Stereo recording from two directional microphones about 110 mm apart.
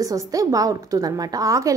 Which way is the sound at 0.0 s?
30° right (ahead or behind).